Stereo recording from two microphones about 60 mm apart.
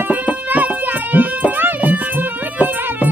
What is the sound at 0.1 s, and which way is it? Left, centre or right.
Music, right.